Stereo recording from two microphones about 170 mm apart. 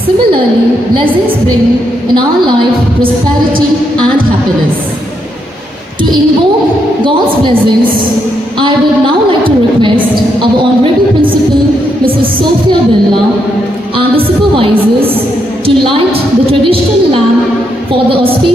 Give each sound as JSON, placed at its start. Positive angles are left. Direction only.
{"t": 0.9, "sound": "a woman's voice", "side_deg": -30}
{"t": 7.1, "sound": "a woman's voice", "side_deg": -30}
{"t": 9.4, "sound": "a sound", "side_deg": -30}
{"t": 13.9, "sound": "a woman's voice", "side_deg": -30}